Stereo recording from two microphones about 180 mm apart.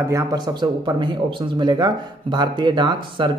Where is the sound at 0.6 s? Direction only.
25° right (ahead or behind).